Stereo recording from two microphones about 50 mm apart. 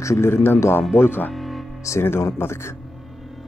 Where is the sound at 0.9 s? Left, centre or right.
Left.